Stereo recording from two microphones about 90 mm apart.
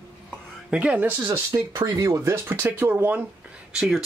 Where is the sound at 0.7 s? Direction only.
15° right (ahead or behind).